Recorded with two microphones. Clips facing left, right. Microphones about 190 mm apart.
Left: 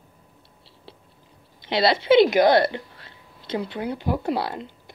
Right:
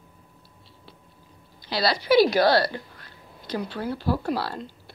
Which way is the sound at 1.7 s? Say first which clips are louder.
Left 3 dB; 25° left (ahead or behind).